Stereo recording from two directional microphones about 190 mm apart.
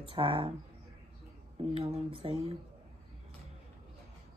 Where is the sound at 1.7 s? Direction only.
30° right (ahead or behind).